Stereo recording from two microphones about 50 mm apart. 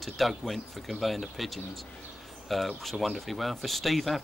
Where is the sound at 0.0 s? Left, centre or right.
Centre.